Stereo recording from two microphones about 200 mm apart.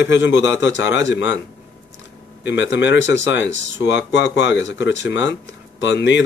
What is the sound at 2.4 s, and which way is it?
Speech, 65° left (ahead or behind).